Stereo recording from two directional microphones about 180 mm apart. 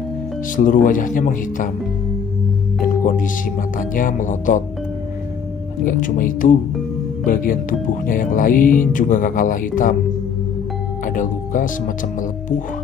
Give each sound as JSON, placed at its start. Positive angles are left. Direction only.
{"t": 0.6, "sound": "speech", "side_deg": 45}
{"t": 2.8, "sound": "speech", "side_deg": 45}
{"t": 5.9, "sound": "speech", "side_deg": 50}
{"t": 11.1, "sound": "speech", "side_deg": 45}